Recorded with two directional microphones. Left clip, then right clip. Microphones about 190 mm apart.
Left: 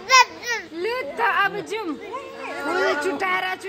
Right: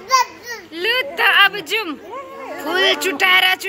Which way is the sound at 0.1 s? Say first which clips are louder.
Left 1 dB; 35° left (ahead or behind).